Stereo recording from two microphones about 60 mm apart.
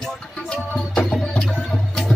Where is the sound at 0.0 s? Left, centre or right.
Centre.